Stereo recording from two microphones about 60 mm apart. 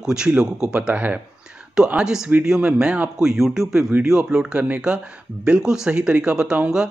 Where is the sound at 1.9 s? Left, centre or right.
Centre.